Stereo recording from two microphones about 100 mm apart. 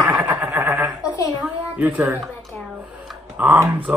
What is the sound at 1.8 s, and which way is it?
Speech, 15° right (ahead or behind).